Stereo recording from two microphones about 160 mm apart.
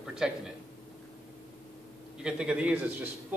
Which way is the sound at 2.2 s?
5° right (ahead or behind).